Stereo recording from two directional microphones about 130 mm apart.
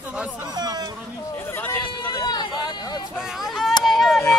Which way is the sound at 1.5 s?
15° left (ahead or behind).